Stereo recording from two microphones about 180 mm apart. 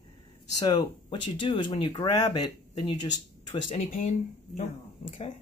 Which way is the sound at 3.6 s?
45° left (ahead or behind).